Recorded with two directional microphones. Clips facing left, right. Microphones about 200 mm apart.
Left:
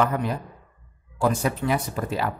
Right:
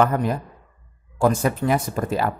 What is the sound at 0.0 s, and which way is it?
Speech, 45° right (ahead or behind).